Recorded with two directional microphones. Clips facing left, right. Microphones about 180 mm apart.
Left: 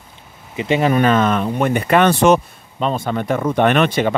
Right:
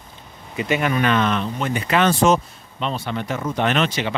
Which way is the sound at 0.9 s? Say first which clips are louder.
Left 5 dB; 45° left (ahead or behind).